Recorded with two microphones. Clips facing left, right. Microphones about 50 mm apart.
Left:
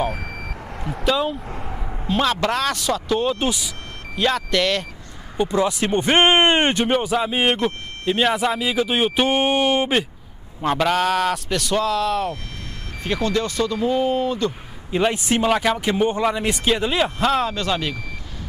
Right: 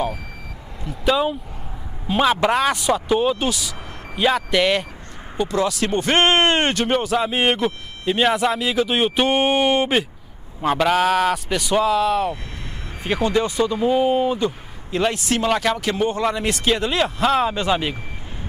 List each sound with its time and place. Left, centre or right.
1.0 s a man's voice: centre
3.3 s speech: centre
4.1 s speech: centre
5.4 s speech: centre
6.9 s a man's voice: centre
13.0 s speech: centre
14.9 s a man's voice: centre
15.1 s speech: left
15.4 s speech: centre
17.2 s a man's voice: centre
17.5 s speech: centre